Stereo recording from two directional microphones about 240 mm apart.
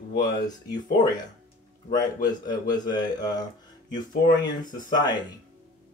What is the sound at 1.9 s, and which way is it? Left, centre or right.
Speech, centre.